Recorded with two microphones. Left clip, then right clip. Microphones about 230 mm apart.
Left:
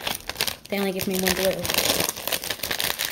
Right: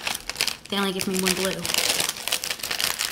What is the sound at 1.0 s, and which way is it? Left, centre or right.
Crumpling, left.